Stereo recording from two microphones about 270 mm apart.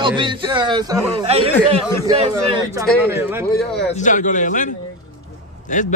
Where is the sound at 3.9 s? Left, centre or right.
Left.